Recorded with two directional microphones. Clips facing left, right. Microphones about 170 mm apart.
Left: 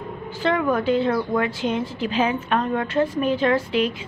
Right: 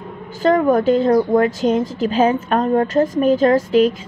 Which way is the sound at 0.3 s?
45° right (ahead or behind).